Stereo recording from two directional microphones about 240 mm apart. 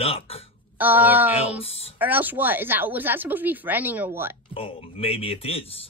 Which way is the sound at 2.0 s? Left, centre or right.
Centre.